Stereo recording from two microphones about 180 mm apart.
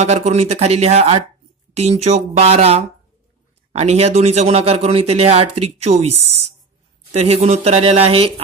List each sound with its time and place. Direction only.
0.0 s a man's voice: 35° right (ahead or behind)